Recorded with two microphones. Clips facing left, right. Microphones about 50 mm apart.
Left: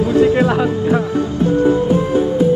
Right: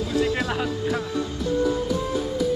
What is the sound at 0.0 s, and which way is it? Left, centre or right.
Music, left.